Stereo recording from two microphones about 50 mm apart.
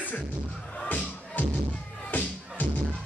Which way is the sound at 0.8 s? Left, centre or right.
Left.